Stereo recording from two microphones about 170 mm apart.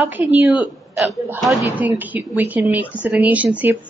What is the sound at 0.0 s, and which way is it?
Speech, 10° right (ahead or behind).